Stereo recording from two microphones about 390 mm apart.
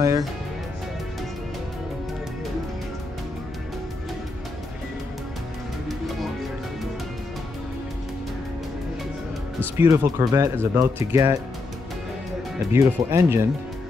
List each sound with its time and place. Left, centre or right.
0.0 s speech: centre
9.8 s speech: centre
12.7 s speech: centre